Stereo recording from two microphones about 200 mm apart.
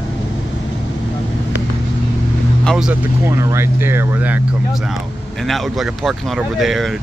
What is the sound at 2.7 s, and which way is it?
Speech, centre (ahead or behind).